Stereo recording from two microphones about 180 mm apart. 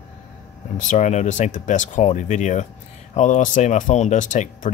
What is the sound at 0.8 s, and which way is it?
Speech, 40° left (ahead or behind).